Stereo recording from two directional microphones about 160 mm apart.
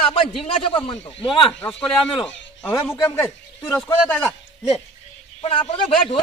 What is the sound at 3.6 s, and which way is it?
Speech, 5° left (ahead or behind).